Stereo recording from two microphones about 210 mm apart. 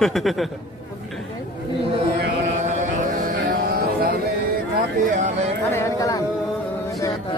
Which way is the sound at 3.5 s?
45° right (ahead or behind).